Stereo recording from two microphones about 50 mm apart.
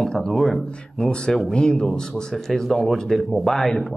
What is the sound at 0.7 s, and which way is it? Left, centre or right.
A man's voice, centre.